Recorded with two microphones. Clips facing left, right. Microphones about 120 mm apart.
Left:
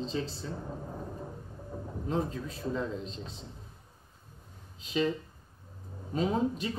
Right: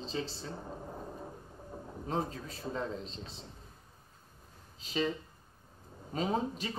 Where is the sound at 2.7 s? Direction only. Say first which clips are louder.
Left 3 dB; 40° right (ahead or behind).